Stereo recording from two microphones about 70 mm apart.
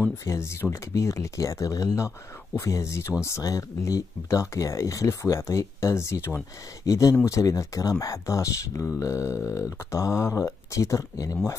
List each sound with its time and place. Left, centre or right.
0.4 s speech: left
6.9 s speech: left